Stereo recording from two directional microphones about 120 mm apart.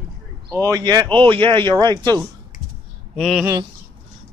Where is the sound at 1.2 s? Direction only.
45° right (ahead or behind).